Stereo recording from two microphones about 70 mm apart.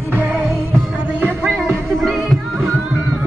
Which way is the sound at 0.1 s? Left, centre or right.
Right.